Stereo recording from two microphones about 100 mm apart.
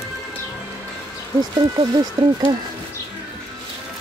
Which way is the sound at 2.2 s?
40° right (ahead or behind).